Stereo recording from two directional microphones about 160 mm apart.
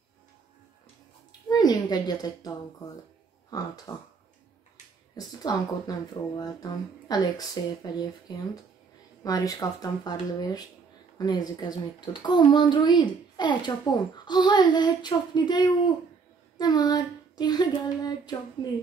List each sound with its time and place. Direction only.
1.5 s a woman's voice: 25° left (ahead or behind)
5.1 s a child's voice: 25° left (ahead or behind)